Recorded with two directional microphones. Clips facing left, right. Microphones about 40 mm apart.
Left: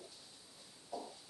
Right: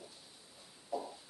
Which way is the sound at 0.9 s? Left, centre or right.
Centre.